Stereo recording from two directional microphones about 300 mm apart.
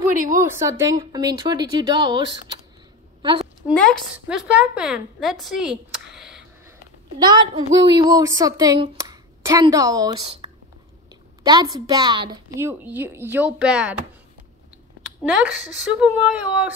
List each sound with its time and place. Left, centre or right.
0.1 s a woman's voice: right
0.4 s a woman's voice: centre
3.6 s a woman's voice: centre
7.2 s a woman's voice: centre
15.2 s a woman's voice: centre